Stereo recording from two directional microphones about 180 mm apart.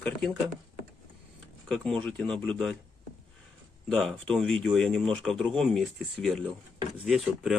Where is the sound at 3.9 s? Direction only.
Centre (ahead or behind).